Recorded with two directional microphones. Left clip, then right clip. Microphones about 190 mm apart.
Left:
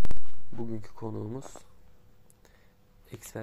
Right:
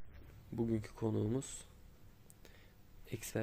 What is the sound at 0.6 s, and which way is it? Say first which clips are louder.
Speech: even; 15° right (ahead or behind).